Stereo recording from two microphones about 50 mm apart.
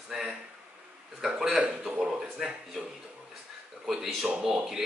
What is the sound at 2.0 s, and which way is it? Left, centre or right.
Speech, centre.